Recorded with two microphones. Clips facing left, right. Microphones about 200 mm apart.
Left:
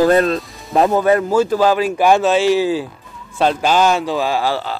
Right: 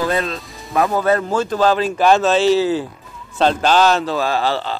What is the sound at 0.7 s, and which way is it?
A man's voice, 20° left (ahead or behind).